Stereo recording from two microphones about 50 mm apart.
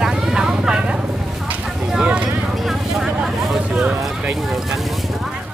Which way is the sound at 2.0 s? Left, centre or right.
Right.